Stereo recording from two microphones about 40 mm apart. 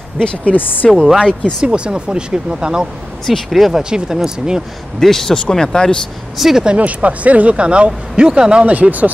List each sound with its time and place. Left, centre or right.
0.5 s speech: left
1.0 s speech: centre
1.4 s speech: right
3.4 s speech: centre
5.0 s speech: centre
6.3 s speech: centre
6.8 s speech: right
8.6 s speech: right